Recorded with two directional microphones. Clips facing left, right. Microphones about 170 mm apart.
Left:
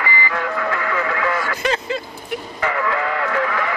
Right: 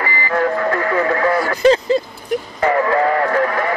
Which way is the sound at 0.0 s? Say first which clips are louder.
Right 5 dB; 40° right (ahead or behind).